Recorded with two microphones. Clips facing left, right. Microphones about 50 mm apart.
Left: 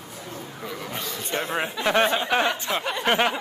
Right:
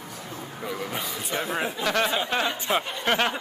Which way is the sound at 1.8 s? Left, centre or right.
Left.